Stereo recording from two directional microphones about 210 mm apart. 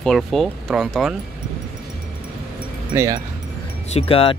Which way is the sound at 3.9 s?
25° left (ahead or behind).